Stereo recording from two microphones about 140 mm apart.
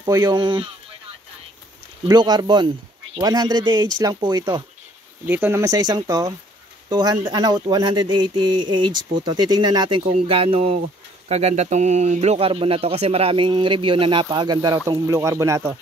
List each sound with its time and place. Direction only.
0.0 s speech: 25° right (ahead or behind)
2.0 s speech: 30° right (ahead or behind)
5.2 s speech: 15° right (ahead or behind)